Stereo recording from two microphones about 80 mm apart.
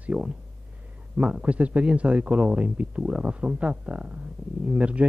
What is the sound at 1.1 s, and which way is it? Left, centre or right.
Speech, centre.